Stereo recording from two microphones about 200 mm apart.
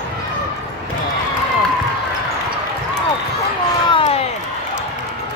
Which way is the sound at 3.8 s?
25° left (ahead or behind).